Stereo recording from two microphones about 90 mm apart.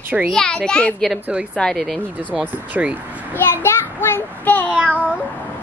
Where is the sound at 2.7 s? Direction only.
20° right (ahead or behind).